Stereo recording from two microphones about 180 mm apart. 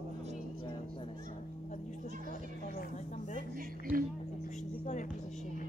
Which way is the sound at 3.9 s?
10° right (ahead or behind).